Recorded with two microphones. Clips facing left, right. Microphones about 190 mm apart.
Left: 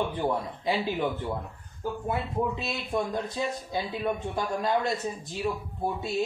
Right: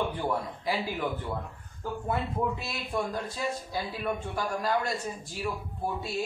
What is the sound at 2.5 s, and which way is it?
A man's voice, 20° left (ahead or behind).